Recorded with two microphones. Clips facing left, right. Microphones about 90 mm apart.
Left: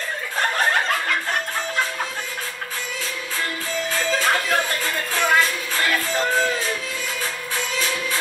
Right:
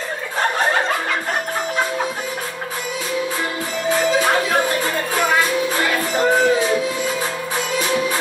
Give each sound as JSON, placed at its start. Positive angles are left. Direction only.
{"t": 3.9, "sound": "music", "side_deg": -15}
{"t": 7.8, "sound": "music", "side_deg": -20}